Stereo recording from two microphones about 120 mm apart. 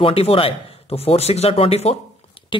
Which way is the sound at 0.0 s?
50° left (ahead or behind).